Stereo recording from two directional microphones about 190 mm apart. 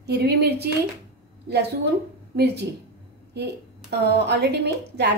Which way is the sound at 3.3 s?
60° right (ahead or behind).